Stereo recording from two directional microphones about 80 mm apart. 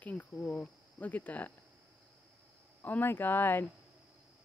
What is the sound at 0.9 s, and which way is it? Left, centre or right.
Speech, left.